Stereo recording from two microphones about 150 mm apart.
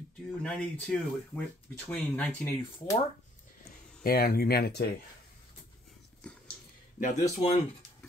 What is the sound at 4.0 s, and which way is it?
Speech, 80° left.